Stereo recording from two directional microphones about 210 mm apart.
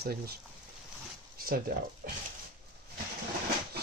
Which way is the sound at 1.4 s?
45° right (ahead or behind).